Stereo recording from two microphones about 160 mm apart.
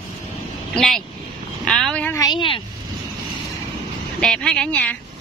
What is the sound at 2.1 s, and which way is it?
Vehicle, 25° left (ahead or behind).